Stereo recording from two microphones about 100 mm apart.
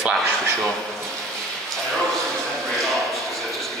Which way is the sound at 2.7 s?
Centre (ahead or behind).